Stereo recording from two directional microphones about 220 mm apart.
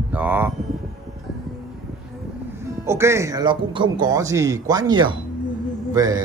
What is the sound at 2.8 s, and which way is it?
A man's voice, 10° right (ahead or behind).